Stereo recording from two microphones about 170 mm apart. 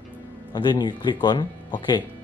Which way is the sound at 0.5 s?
25° left (ahead or behind).